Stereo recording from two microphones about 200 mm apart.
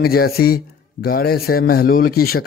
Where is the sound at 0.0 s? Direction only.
50° left (ahead or behind).